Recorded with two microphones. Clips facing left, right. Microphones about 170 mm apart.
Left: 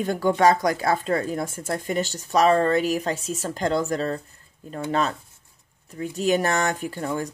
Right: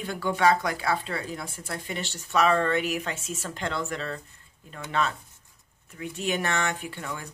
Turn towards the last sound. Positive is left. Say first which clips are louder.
# left 9 dB
turn(degrees=40)  # may be behind; listen again after turning